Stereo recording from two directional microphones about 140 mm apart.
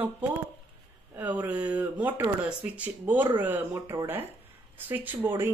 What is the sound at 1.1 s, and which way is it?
Speech, 10° right (ahead or behind).